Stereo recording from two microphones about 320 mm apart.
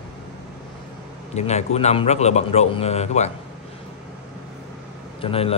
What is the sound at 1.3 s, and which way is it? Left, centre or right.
A man's voice, left.